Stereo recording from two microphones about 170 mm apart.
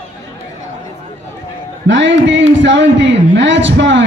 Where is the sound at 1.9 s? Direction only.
90° right.